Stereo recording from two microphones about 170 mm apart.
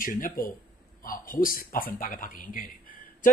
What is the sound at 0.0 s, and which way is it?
A man's voice, 55° left (ahead or behind).